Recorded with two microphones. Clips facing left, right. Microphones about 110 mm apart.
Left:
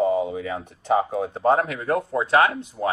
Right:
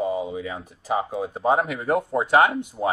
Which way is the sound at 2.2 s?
20° right (ahead or behind).